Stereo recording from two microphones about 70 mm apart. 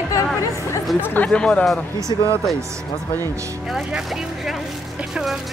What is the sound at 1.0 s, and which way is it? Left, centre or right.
Speech, left.